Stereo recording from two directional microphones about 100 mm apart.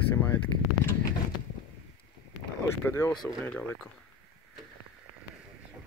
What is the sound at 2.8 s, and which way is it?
Speech, 25° left (ahead or behind).